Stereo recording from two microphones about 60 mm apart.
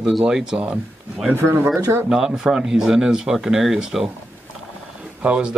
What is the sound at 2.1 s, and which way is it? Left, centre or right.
Speech, centre.